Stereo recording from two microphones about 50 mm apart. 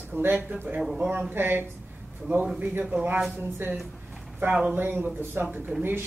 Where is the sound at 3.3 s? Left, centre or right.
Right.